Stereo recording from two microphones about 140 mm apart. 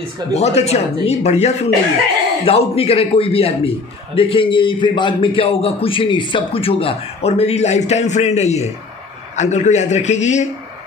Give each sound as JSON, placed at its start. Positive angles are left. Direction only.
{"t": 0.3, "sound": "a man's voice", "side_deg": 50}